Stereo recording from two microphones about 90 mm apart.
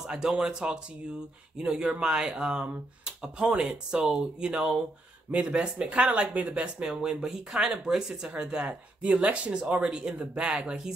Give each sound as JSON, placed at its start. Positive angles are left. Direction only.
{"t": 0.0, "sound": "speech", "side_deg": -10}